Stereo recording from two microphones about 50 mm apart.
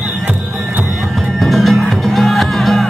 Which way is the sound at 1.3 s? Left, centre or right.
Centre.